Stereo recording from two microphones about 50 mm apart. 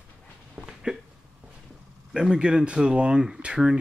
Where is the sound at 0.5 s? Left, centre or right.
Centre.